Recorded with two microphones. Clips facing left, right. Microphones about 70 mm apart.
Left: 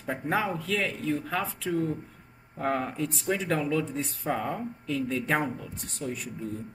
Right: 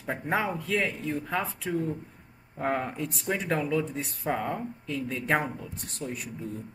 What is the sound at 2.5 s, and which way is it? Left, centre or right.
Speech, centre.